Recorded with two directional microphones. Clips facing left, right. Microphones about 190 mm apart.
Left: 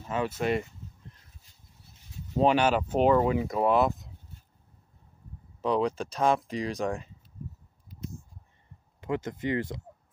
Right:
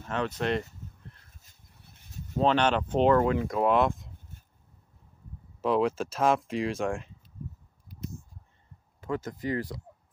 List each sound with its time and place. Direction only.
0.1 s speech: 5° left (ahead or behind)
1.4 s dog: 60° right (ahead or behind)
2.3 s speech: 10° left (ahead or behind)
4.3 s a sound: 50° right (ahead or behind)
5.6 s speech: centre (ahead or behind)
9.0 s speech: 20° left (ahead or behind)